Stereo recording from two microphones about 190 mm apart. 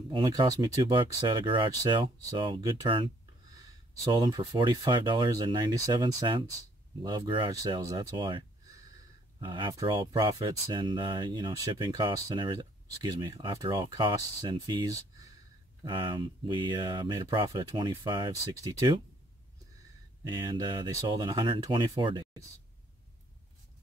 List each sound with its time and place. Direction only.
0.1 s speech: 20° right (ahead or behind)
20.2 s speech: 20° right (ahead or behind)